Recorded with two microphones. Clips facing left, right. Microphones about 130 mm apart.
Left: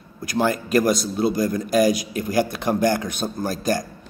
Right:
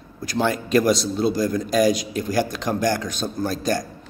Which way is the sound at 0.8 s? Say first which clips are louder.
Right 1 dB; 50° left (ahead or behind).